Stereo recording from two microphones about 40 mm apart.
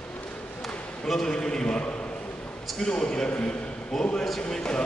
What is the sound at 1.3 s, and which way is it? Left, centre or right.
A man's voice, centre.